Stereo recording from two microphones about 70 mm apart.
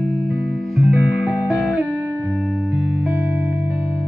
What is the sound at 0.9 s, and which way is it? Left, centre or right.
Music, centre.